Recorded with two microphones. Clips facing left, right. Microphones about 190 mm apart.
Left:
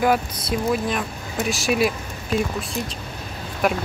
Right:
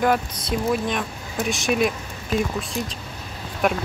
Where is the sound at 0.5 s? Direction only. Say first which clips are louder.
Even; centre (ahead or behind).